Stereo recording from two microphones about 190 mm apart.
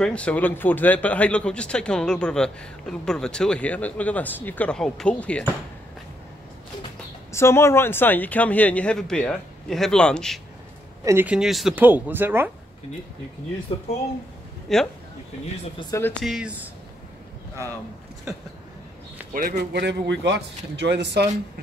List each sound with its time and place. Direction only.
0.0 s speech: 5° left (ahead or behind)
7.3 s speech: 15° left (ahead or behind)
11.1 s speech: 10° right (ahead or behind)
13.7 s speech: 25° left (ahead or behind)
14.7 s speech: centre (ahead or behind)
15.9 s speech: 10° left (ahead or behind)
19.3 s speech: 55° right (ahead or behind)